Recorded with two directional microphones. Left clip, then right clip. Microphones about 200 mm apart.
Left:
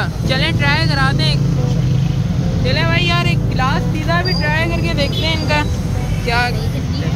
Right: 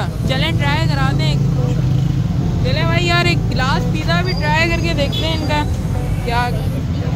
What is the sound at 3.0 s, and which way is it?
Speech, 45° right (ahead or behind).